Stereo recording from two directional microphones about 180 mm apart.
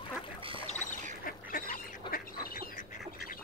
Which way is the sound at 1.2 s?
50° left (ahead or behind).